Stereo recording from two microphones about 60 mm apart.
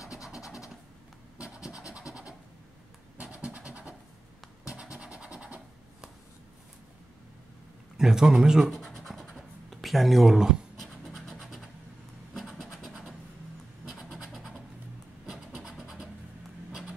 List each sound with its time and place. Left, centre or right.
1.4 s scratch: centre
4.9 s scratch: centre
8.0 s speech: centre
8.7 s scratch: centre
9.3 s writing: centre
10.8 s scratch: centre
14.1 s scratch: centre
15.6 s scratch: centre